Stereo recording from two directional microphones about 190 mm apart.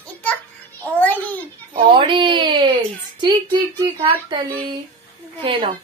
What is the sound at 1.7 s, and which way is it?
Speech, 25° right (ahead or behind).